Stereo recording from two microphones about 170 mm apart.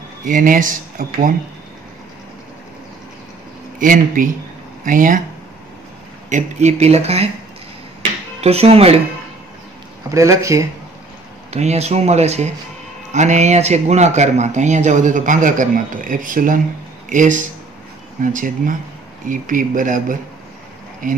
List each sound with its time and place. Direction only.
0.2 s speech: 50° right (ahead or behind)
3.8 s speech: 55° right (ahead or behind)
6.3 s speech: 45° right (ahead or behind)
8.4 s speech: 35° right (ahead or behind)
10.1 s speech: 15° right (ahead or behind)
11.5 s speech: 40° right (ahead or behind)